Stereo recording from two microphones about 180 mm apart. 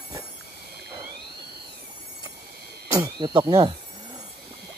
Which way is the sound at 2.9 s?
20° right (ahead or behind).